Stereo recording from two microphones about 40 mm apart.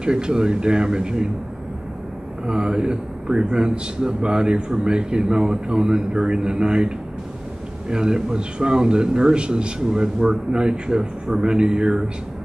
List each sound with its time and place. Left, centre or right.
0.0 s a man's voice: right
2.4 s a man's voice: right
7.9 s a man's voice: centre